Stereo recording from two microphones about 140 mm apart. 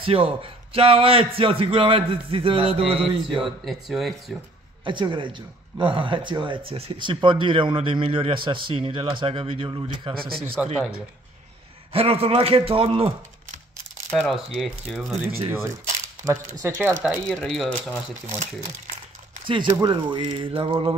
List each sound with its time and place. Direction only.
0.0 s speech: 40° right (ahead or behind)
3.6 s speech: centre (ahead or behind)
4.8 s speech: 35° right (ahead or behind)
10.6 s speech: 10° right (ahead or behind)
11.9 s a man's voice: 45° right (ahead or behind)
14.1 s speech: centre (ahead or behind)
15.5 s speech: 20° right (ahead or behind)
17.3 s speech: 5° left (ahead or behind)
19.4 s speech: 35° right (ahead or behind)